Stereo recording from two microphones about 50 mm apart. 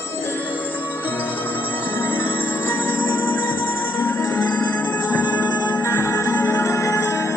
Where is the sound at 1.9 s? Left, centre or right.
Left.